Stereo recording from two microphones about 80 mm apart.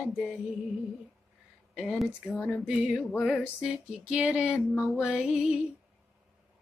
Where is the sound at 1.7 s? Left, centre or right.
Centre.